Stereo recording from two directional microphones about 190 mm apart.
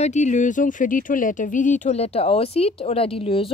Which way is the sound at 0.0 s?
40° left (ahead or behind).